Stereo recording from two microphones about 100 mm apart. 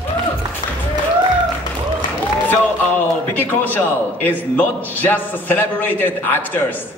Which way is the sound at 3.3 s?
20° left (ahead or behind).